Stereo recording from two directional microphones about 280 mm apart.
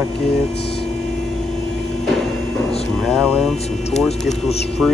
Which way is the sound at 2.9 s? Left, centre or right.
Centre.